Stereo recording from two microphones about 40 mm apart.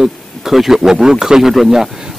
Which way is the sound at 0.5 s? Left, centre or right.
Centre.